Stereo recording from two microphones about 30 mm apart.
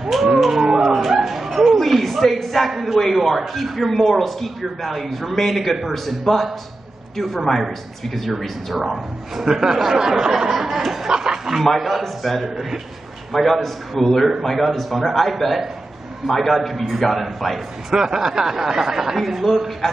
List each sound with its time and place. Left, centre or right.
0.0 s a sound: centre
0.5 s howl: centre
1.2 s dog: centre
1.8 s a sound: centre
2.7 s speech: centre
8.0 s speech: centre
8.7 s speech: centre
11.6 s a man's voice: centre
14.7 s speech: centre
17.9 s speech: centre
19.1 s speech: centre